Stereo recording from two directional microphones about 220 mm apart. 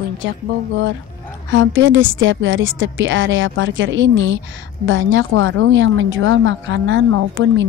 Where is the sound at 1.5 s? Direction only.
60° right (ahead or behind).